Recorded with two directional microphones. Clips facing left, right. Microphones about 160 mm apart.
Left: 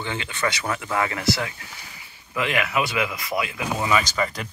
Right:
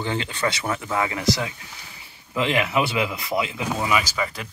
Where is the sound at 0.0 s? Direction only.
35° right (ahead or behind); by 1.5 s 15° right (ahead or behind).